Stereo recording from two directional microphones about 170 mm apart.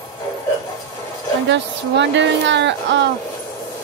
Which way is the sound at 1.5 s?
90° right.